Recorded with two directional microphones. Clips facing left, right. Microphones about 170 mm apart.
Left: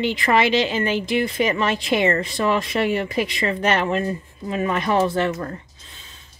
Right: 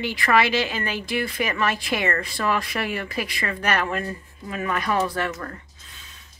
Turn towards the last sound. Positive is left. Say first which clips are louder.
# left 5 dB
turn(degrees=25)  # may be behind; listen again after turning